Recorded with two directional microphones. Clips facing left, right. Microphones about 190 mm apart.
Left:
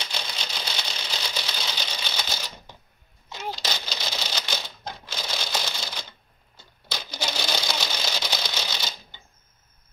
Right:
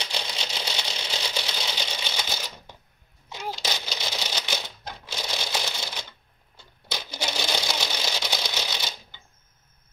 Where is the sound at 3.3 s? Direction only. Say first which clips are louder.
Even; 10° right (ahead or behind).